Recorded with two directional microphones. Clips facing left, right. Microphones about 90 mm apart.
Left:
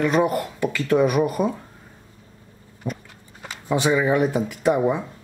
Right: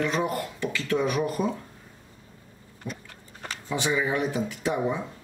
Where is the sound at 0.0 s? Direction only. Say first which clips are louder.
Left 7 dB; 50° left (ahead or behind).